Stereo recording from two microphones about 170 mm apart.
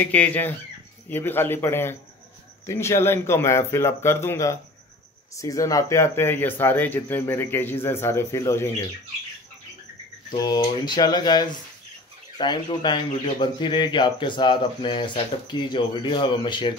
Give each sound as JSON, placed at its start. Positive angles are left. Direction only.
{"t": 0.0, "sound": "speech", "side_deg": 10}
{"t": 10.3, "sound": "speech", "side_deg": 25}